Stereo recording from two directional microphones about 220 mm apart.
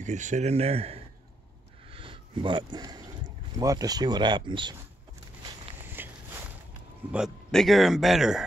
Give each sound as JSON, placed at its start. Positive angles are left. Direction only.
{"t": 0.0, "sound": "speech", "side_deg": -35}
{"t": 5.9, "sound": "walk", "side_deg": -10}
{"t": 7.1, "sound": "speech", "side_deg": -5}